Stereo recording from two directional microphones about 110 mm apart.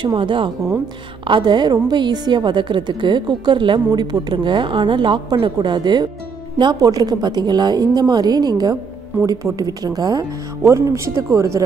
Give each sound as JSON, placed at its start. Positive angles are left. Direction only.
{"t": 0.0, "sound": "a woman's voice", "side_deg": -45}